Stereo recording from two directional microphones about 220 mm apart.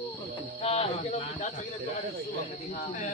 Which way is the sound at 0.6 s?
30° left (ahead or behind).